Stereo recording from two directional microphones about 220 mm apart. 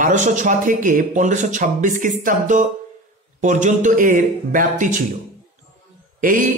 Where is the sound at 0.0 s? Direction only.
35° right (ahead or behind).